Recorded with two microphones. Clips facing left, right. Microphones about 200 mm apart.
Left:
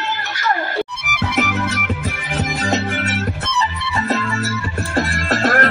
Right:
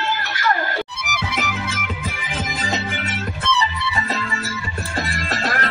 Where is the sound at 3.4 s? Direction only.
45° left (ahead or behind).